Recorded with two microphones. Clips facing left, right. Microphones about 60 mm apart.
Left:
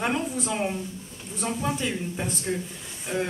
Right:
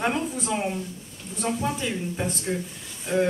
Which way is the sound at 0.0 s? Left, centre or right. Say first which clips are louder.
Right 1 dB; centre.